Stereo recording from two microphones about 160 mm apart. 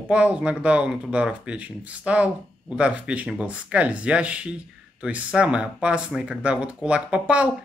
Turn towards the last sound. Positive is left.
turn(degrees=-10)  # may be behind; listen again after turning